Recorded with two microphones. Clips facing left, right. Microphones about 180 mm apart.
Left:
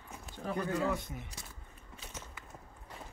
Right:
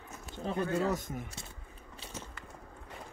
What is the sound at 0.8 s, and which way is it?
Speech, 45° right (ahead or behind).